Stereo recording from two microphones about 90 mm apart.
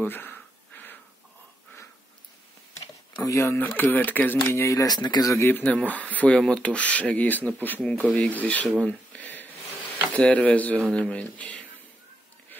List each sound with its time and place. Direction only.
0.0 s a sound: 20° left (ahead or behind)
3.3 s speech: 30° left (ahead or behind)
4.8 s speech: 50° left (ahead or behind)
5.3 s speech: 25° left (ahead or behind)
5.6 s speech: 15° left (ahead or behind)
8.8 s a sound: 15° left (ahead or behind)
10.1 s speech: 15° left (ahead or behind)